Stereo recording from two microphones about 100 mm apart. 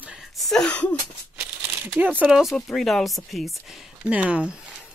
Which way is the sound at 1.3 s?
15° right (ahead or behind).